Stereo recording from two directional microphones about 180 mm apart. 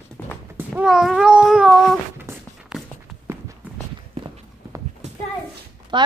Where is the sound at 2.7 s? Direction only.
5° right (ahead or behind).